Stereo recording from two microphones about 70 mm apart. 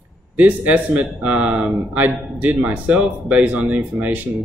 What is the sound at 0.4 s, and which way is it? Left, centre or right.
A man's voice, right.